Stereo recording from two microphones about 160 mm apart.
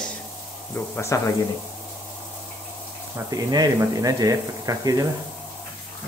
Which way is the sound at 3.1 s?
25° right (ahead or behind).